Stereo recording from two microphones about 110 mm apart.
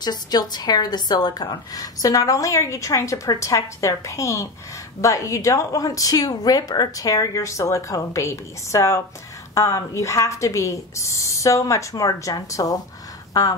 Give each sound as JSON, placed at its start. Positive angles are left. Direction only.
{"t": 0.0, "sound": "a woman's voice", "side_deg": 40}